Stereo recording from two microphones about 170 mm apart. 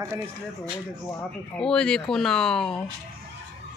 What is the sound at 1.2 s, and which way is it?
Speech, 5° left (ahead or behind).